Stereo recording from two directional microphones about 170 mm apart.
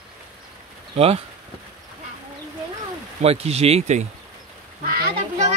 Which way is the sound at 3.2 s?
40° right (ahead or behind).